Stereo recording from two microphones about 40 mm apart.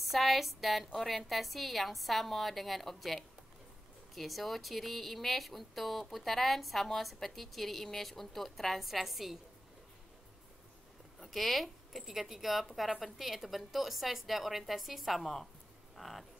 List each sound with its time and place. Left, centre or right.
0.0 s speech: centre
11.2 s speech: centre